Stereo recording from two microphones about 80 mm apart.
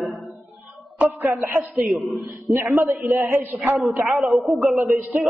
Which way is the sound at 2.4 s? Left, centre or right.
Right.